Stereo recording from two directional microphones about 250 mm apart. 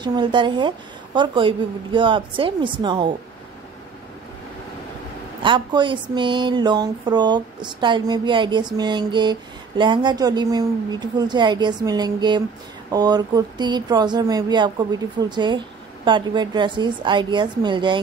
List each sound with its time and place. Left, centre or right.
0.0 s a woman's voice: centre
5.4 s a woman's voice: centre